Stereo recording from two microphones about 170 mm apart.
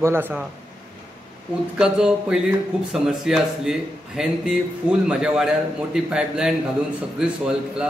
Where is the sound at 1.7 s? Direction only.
5° right (ahead or behind).